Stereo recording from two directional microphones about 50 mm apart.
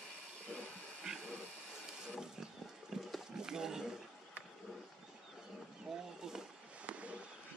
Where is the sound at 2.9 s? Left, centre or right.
Centre.